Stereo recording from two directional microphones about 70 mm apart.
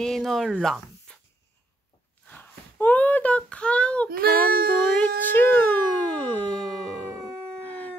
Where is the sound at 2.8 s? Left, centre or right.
Left.